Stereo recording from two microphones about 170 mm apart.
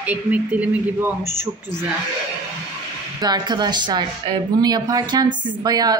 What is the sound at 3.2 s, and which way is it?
A woman's voice, 25° right (ahead or behind).